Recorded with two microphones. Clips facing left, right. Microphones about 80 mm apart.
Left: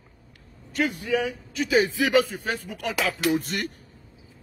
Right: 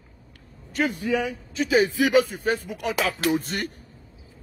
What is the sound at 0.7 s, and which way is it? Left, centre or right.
A man's voice, right.